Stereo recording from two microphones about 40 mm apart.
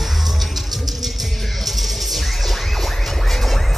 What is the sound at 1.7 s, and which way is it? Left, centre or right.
Music, centre.